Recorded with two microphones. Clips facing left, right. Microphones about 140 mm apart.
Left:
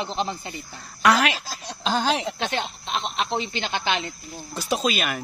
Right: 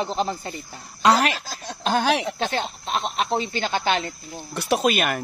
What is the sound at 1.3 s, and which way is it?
Speech, 50° right (ahead or behind).